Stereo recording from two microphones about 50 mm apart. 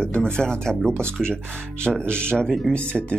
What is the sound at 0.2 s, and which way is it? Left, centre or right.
Speech, centre.